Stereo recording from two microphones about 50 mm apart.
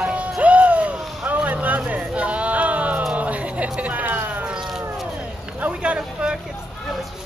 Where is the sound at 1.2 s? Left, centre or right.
Right.